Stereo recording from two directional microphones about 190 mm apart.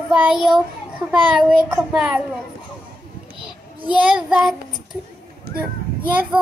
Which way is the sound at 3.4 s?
5° right (ahead or behind).